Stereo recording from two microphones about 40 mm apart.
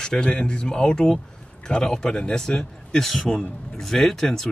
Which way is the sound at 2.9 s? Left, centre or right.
Centre.